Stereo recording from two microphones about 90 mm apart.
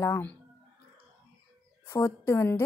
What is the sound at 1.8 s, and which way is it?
Speech, 35° left (ahead or behind).